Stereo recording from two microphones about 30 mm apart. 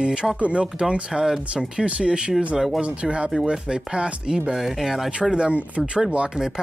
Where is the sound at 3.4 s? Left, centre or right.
Right.